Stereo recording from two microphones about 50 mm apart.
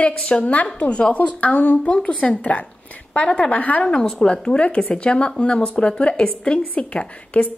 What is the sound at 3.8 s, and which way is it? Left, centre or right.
Speech, centre.